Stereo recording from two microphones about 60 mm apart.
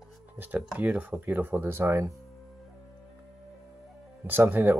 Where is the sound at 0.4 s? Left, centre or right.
Right.